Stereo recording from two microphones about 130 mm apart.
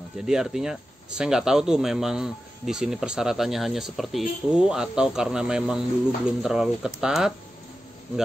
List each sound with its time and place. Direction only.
0.2 s speech: 5° right (ahead or behind)